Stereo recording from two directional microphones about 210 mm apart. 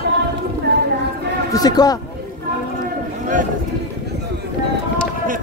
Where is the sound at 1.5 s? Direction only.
20° left (ahead or behind).